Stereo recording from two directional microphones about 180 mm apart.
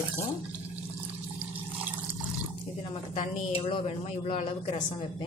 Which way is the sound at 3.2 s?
30° left (ahead or behind).